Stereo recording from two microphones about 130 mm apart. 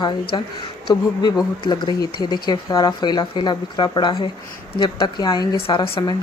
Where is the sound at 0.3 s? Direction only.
35° left (ahead or behind).